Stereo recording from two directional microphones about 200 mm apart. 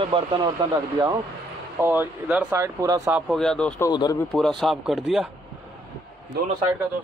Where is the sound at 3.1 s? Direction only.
Centre (ahead or behind).